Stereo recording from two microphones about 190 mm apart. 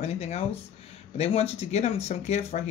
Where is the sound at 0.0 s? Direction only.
35° left (ahead or behind).